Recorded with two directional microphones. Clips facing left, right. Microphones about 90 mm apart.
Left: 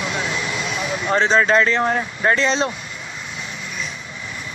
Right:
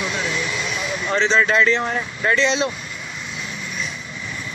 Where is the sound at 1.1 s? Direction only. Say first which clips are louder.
Left 2 dB; 45° left (ahead or behind).